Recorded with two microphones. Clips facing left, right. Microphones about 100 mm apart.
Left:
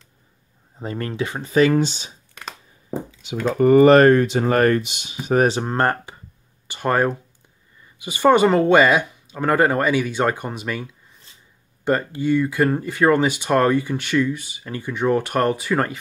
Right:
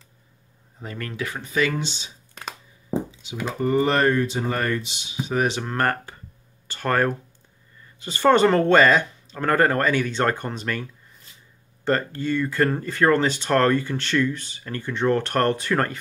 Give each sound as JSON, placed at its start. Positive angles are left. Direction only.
{"t": 0.7, "sound": "speech", "side_deg": 30}
{"t": 3.4, "sound": "speech", "side_deg": 65}
{"t": 5.5, "sound": "speech", "side_deg": 30}